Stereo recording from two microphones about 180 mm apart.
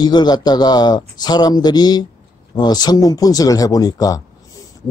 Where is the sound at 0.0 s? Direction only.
25° left (ahead or behind).